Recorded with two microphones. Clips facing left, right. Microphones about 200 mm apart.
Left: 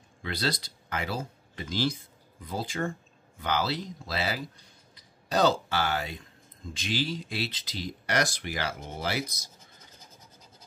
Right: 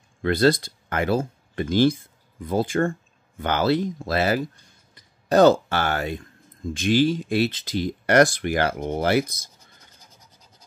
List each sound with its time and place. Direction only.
0.2 s speech: 50° right (ahead or behind)